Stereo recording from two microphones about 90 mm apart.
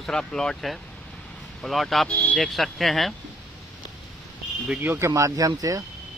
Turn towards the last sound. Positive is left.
turn(degrees=-40)  # may be behind; listen again after turning